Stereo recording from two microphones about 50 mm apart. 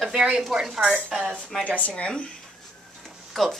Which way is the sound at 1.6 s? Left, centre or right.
Left.